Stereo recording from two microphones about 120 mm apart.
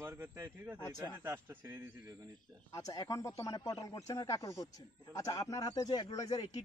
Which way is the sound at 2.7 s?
30° left (ahead or behind).